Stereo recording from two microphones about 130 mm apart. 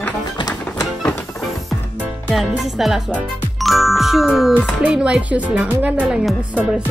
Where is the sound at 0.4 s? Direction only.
30° left (ahead or behind).